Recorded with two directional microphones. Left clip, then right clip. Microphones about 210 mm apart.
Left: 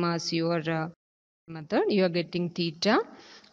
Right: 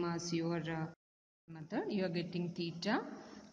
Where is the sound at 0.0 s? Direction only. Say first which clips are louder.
Left 10 dB; 50° left (ahead or behind).